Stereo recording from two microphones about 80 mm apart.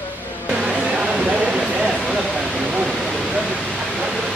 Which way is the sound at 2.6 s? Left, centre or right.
Centre.